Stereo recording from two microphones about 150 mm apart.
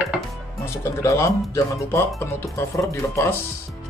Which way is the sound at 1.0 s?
20° left (ahead or behind).